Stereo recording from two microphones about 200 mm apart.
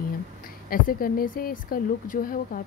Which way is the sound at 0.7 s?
45° left (ahead or behind).